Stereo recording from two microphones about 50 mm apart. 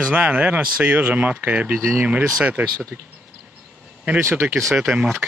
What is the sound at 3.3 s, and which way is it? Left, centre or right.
Train, centre.